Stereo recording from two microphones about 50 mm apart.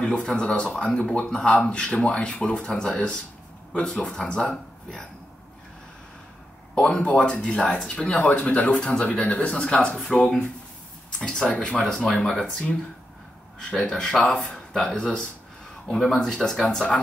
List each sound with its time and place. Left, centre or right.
0.0 s speech: centre
3.7 s a man's voice: centre
6.7 s a man's voice: centre
11.1 s a man's voice: centre